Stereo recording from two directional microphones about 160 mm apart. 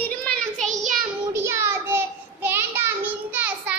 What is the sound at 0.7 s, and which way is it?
Child singing, 50° right (ahead or behind).